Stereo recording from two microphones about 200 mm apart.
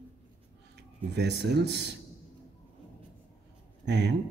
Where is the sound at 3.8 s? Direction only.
60° right (ahead or behind).